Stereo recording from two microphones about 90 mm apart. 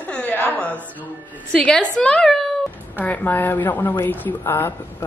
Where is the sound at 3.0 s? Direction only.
20° left (ahead or behind).